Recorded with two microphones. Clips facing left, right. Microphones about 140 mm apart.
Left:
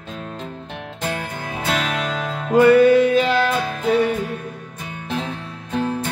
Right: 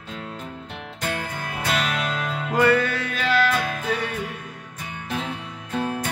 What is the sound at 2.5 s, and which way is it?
Music, 20° left (ahead or behind).